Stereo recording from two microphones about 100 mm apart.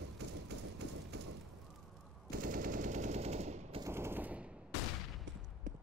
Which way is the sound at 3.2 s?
90° right.